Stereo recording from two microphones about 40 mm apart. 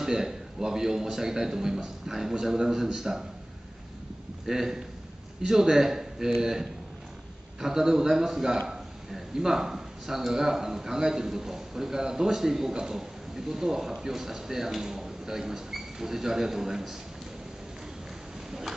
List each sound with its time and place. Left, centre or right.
0.0 s a man's voice: centre
4.5 s a man's voice: centre
18.5 s a sound: centre